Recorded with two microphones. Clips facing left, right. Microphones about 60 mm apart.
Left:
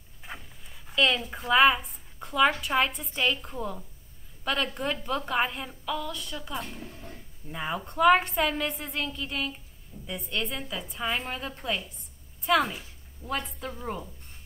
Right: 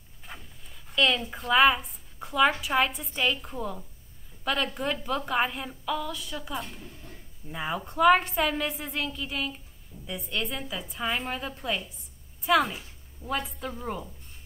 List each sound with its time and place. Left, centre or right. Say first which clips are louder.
0.2 s a woman's voice: left 2 dB; centre
6.8 s a sound: left 3 dB; left
7.4 s a woman's voice: right 1 dB; centre